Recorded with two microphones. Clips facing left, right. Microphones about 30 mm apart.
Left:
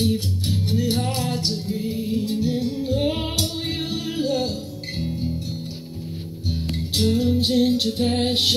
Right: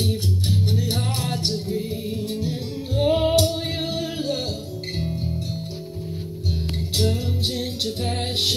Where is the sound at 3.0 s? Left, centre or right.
Centre.